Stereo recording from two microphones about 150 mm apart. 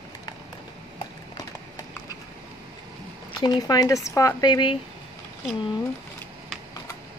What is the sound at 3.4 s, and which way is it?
Speech, 25° left (ahead or behind).